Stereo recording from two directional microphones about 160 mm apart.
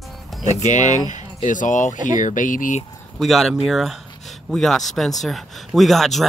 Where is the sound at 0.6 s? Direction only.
50° left (ahead or behind).